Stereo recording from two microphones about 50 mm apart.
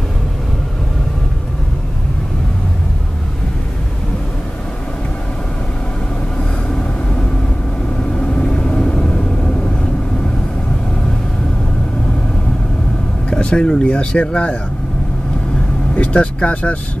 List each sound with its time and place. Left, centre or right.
6.7 s vehicle: left
13.3 s speech: centre
15.9 s speech: left